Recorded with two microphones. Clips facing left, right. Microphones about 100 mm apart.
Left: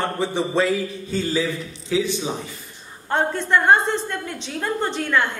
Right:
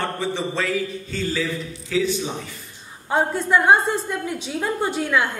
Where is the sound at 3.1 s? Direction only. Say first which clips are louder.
Right 1 dB; 10° right (ahead or behind).